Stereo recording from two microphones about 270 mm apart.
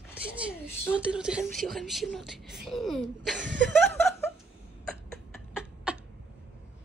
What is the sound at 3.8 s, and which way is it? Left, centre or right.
Laughter, centre.